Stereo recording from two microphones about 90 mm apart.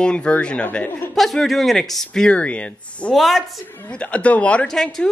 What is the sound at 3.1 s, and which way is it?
Speech, centre (ahead or behind).